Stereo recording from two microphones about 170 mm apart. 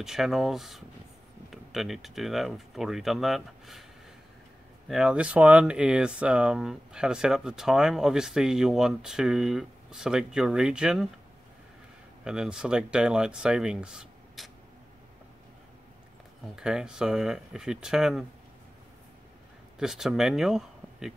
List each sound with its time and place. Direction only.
0.0 s speech: centre (ahead or behind)
4.8 s speech: 5° right (ahead or behind)
12.3 s speech: 5° right (ahead or behind)
16.5 s speech: 5° right (ahead or behind)
19.8 s speech: 5° right (ahead or behind)